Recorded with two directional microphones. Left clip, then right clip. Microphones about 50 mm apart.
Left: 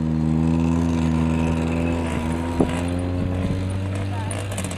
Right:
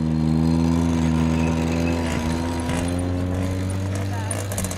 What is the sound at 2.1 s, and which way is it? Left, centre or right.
Vehicle, right.